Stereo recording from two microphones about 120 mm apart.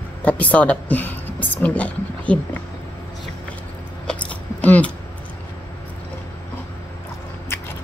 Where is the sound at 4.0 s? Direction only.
10° left (ahead or behind).